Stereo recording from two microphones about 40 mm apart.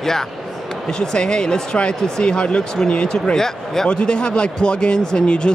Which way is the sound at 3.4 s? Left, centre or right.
Centre.